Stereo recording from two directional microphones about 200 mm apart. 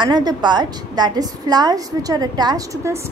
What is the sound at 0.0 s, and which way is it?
A woman's voice, 20° right (ahead or behind).